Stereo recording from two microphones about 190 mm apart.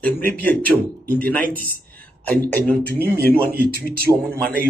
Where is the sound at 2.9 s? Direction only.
55° right (ahead or behind).